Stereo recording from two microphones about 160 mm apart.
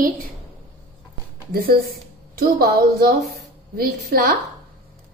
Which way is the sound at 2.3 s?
70° right (ahead or behind).